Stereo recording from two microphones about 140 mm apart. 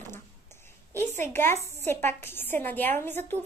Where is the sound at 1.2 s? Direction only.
15° left (ahead or behind).